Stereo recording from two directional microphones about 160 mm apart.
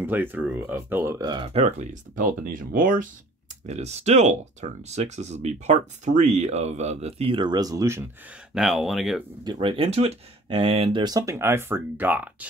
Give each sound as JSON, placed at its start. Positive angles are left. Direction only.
{"t": 0.0, "sound": "speech", "side_deg": -10}
{"t": 1.5, "sound": "speech", "side_deg": -45}
{"t": 2.4, "sound": "speech", "side_deg": -60}
{"t": 3.6, "sound": "speech", "side_deg": -45}
{"t": 8.5, "sound": "speech", "side_deg": 0}
{"t": 9.4, "sound": "speech", "side_deg": -30}